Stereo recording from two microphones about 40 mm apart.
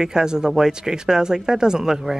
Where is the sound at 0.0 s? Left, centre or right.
Centre.